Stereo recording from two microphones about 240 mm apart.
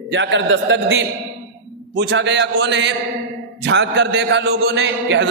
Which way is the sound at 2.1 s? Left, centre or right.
Right.